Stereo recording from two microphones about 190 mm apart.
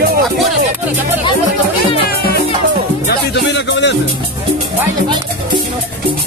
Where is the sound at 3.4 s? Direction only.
65° left (ahead or behind).